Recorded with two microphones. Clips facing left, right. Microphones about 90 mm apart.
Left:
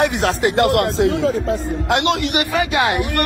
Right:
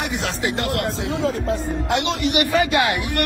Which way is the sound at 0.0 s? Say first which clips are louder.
Left 7 dB; 60° left (ahead or behind).